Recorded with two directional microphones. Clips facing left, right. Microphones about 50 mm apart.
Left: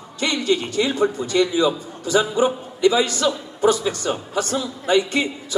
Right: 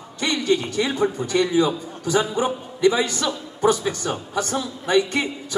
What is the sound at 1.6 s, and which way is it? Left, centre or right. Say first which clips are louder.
A man's voice: left 2 dB; left.